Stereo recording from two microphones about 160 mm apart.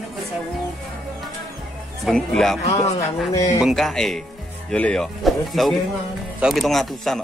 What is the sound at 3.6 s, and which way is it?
Speech, centre (ahead or behind).